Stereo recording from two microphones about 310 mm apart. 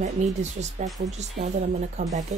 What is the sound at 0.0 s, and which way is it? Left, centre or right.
A woman's voice, right.